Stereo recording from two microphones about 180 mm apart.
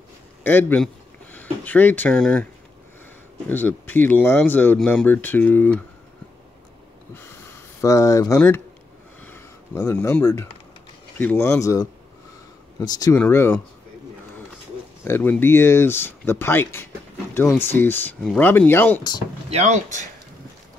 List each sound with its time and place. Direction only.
0.4 s speech: 10° left (ahead or behind)
3.4 s speech: 10° left (ahead or behind)
7.8 s speech: 20° left (ahead or behind)
9.2 s a sound: 15° left (ahead or behind)
11.1 s speech: 10° left (ahead or behind)
15.0 s speech: 10° left (ahead or behind)
19.5 s speech: 40° right (ahead or behind)